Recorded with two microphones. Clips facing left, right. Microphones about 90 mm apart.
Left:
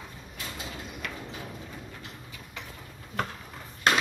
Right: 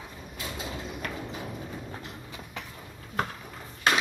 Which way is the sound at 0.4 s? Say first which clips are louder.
Right 3 dB; 15° right (ahead or behind).